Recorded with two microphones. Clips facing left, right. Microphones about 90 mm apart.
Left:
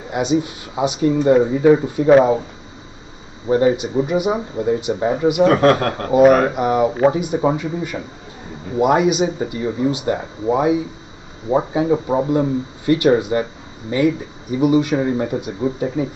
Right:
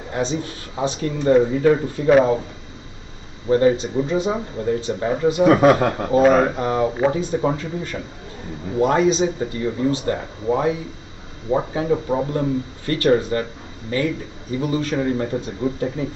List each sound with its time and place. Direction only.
0.1 s speech: 15° left (ahead or behind)
3.4 s speech: 15° left (ahead or behind)
5.4 s a man's voice: 5° right (ahead or behind)
6.1 s speech: 10° left (ahead or behind)